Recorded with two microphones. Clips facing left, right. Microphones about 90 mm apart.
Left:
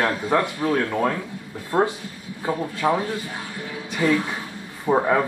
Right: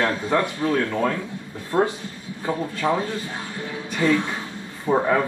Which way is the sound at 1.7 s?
30° left (ahead or behind).